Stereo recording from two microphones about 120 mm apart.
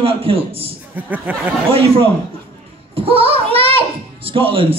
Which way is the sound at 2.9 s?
50° right (ahead or behind).